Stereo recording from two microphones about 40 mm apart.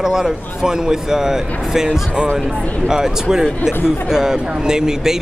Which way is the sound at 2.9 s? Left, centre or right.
Centre.